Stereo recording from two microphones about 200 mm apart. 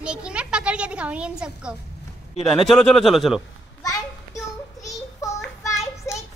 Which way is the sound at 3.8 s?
15° left (ahead or behind).